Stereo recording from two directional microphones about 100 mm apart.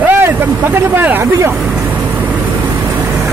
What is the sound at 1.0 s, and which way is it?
Speech, 20° right (ahead or behind).